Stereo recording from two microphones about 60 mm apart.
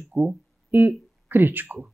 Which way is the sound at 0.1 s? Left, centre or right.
Right.